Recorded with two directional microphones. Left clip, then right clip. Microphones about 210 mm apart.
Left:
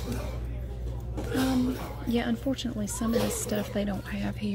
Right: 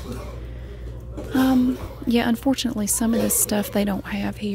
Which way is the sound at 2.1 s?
45° right (ahead or behind).